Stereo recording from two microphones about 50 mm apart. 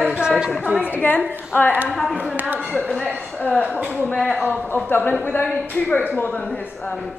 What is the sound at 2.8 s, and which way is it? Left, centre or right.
Speech, centre.